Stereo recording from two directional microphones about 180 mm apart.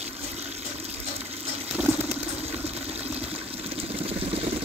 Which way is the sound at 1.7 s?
10° right (ahead or behind).